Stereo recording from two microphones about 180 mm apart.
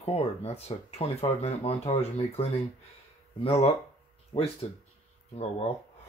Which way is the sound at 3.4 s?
35° left (ahead or behind).